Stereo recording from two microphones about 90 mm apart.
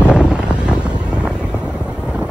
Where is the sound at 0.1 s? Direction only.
10° right (ahead or behind).